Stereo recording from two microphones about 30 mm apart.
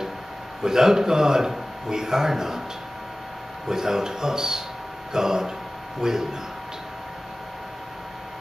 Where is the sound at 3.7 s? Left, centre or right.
Centre.